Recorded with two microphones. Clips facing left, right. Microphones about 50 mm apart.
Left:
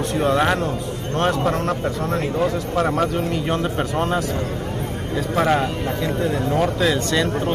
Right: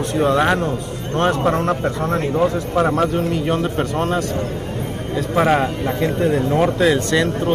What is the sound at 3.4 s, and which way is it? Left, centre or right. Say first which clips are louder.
Speech: right 2 dB; centre.